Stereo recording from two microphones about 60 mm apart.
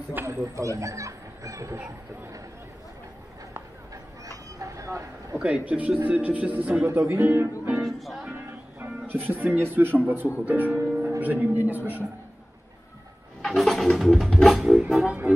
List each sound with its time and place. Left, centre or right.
0.3 s speech: right
4.6 s vehicle: right
5.4 s speech: right
6.9 s speech: right
7.7 s music: centre
8.3 s speech: right
13.4 s vehicle: centre
13.9 s music: centre